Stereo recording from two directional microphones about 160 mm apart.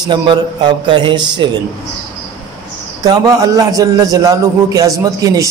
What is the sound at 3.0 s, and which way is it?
A man's voice, 20° right (ahead or behind).